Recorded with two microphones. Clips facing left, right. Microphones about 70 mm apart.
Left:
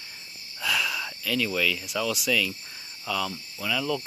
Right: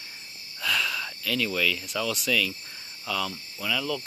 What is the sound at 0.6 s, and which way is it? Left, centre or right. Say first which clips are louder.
Speech: even; centre.